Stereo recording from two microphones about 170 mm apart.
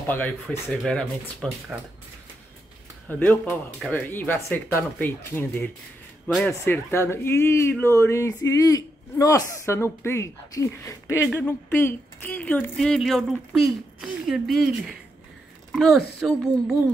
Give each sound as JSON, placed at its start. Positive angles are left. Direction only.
{"t": 0.0, "sound": "speech", "side_deg": 10}
{"t": 3.1, "sound": "speech", "side_deg": 10}